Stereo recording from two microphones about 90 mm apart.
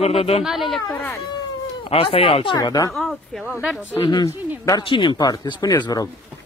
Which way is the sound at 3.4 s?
10° right (ahead or behind).